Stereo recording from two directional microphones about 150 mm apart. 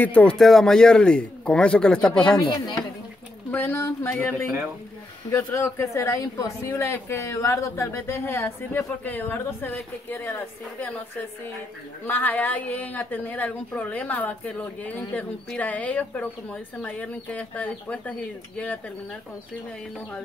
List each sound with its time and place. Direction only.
0.0 s speech: 10° left (ahead or behind)
3.5 s speech: 15° left (ahead or behind)
12.1 s speech: 10° left (ahead or behind)